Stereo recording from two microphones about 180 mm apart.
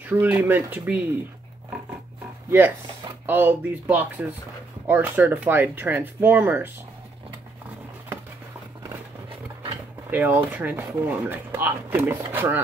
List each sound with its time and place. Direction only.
0.0 s speech: 10° right (ahead or behind)
3.3 s speech: 10° right (ahead or behind)
9.3 s a sound: 30° right (ahead or behind)
10.0 s speech: 10° right (ahead or behind)